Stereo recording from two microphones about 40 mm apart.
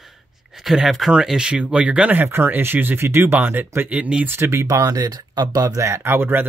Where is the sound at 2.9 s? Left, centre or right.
Right.